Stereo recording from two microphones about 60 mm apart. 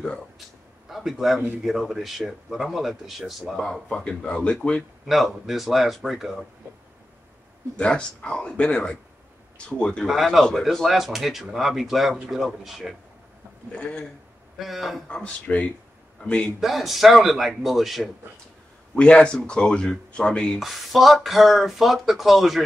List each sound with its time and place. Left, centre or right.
0.8 s speech: centre
5.0 s speech: centre
7.7 s speech: centre
10.0 s speech: centre
13.7 s speech: centre
14.6 s speech: centre
15.1 s speech: left
16.5 s speech: centre
18.9 s speech: centre
20.5 s speech: centre